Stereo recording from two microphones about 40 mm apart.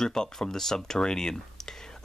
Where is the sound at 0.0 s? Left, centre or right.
Centre.